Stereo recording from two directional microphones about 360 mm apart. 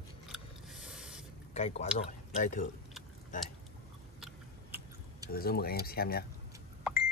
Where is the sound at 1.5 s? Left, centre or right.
Centre.